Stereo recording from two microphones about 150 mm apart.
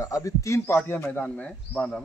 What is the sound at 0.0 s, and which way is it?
Speech, 20° left (ahead or behind).